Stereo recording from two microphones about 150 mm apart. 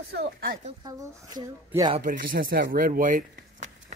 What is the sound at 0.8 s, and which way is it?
Speech, 25° right (ahead or behind).